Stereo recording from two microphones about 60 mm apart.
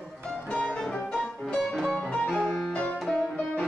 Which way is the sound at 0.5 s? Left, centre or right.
Centre.